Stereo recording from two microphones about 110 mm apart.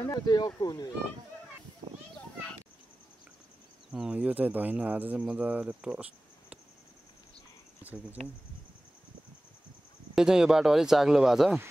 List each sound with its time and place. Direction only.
0.1 s speech: 40° left (ahead or behind)
3.9 s speech: 10° right (ahead or behind)
7.8 s speech: 15° right (ahead or behind)
10.1 s speech: 5° right (ahead or behind)